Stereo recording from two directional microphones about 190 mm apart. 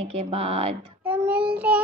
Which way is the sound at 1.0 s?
10° right (ahead or behind).